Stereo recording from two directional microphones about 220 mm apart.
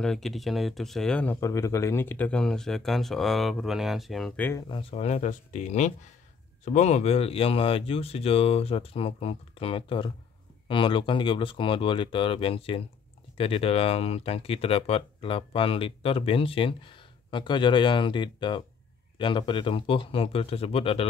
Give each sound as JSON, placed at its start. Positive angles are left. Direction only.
{"t": 0.0, "sound": "speech", "side_deg": 0}
{"t": 4.6, "sound": "speech", "side_deg": 25}